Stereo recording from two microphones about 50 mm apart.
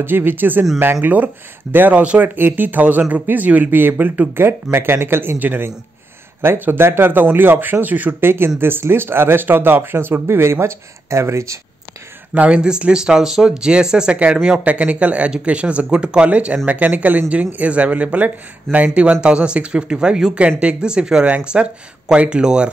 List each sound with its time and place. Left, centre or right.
0.0 s speech: right
5.4 s speech: right
8.2 s speech: right
12.4 s speech: right
20.3 s speech: right